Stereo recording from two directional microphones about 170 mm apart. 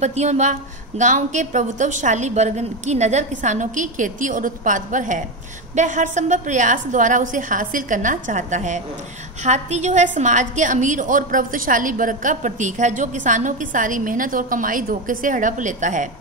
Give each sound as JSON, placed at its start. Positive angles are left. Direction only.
{"t": 0.0, "sound": "a woman's voice", "side_deg": -40}